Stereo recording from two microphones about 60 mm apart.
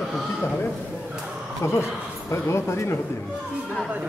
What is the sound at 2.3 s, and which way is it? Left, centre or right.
Speech, left.